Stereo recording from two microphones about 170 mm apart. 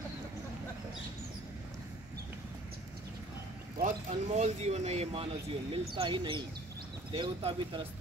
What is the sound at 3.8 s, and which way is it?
Speech, 45° right (ahead or behind).